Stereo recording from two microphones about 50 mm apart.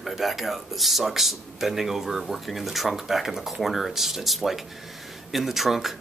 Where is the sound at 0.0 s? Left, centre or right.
Centre.